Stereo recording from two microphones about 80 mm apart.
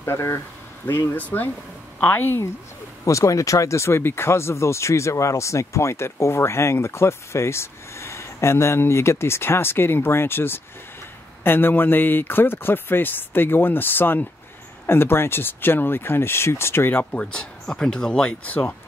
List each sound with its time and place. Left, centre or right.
0.0 s speech: left
3.1 s speech: left
17.0 s speech: centre
18.4 s speech: left